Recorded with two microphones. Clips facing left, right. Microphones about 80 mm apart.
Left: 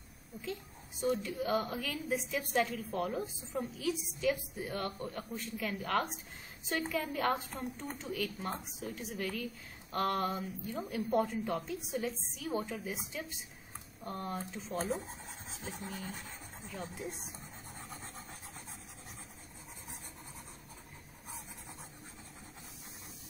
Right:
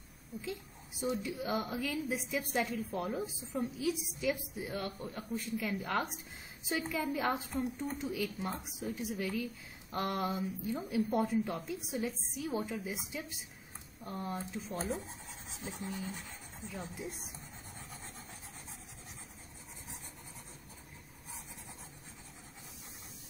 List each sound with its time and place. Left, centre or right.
0.4 s a woman's voice: centre
15.0 s rub: left
16.6 s a woman's voice: centre
17.7 s a sound: left